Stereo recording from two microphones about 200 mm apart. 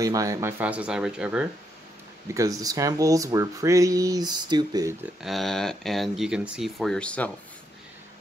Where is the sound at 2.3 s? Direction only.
15° right (ahead or behind).